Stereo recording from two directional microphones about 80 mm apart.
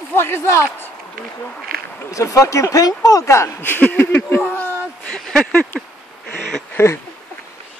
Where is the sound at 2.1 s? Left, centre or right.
Left.